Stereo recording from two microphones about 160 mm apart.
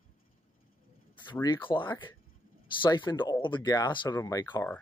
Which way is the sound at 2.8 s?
30° left (ahead or behind).